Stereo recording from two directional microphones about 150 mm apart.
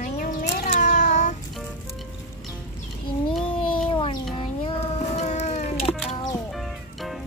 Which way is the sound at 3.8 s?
35° left (ahead or behind).